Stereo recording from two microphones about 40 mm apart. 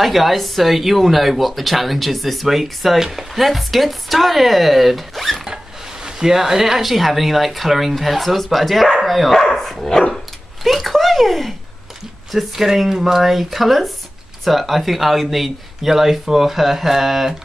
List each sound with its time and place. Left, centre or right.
0.0 s speech: centre
6.0 s speech: centre
9.6 s dog: centre
10.1 s a sound: centre
12.3 s speech: centre